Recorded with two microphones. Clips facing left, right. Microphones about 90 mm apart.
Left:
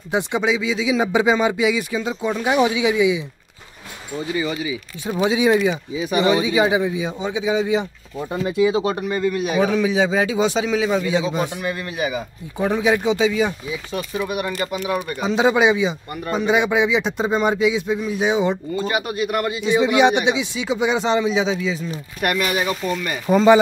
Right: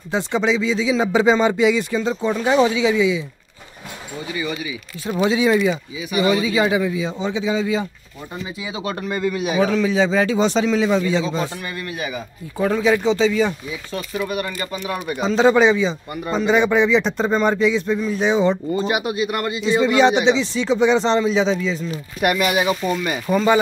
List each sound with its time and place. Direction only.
0.1 s a man's voice: 15° left (ahead or behind)
4.4 s a man's voice: 20° left (ahead or behind)
5.9 s speech: 35° left (ahead or behind)
6.2 s a man's voice: 20° left (ahead or behind)
8.3 s speech: 60° left (ahead or behind)
8.8 s a man's voice: 15° left (ahead or behind)
9.1 s speech: centre (ahead or behind)
9.7 s a man's voice: 10° left (ahead or behind)
18.9 s speech: 15° right (ahead or behind)
19.1 s a man's voice: centre (ahead or behind)
22.2 s speech: 10° right (ahead or behind)
23.3 s a man's voice: 25° left (ahead or behind)